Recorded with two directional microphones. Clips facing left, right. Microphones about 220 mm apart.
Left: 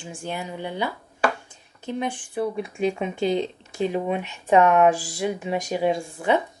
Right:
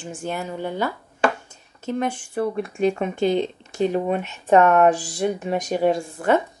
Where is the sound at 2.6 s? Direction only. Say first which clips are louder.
Right 3 dB; 50° right (ahead or behind).